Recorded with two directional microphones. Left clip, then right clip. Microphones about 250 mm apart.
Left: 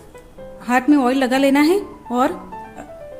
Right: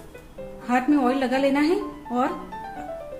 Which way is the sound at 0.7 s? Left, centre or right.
Left.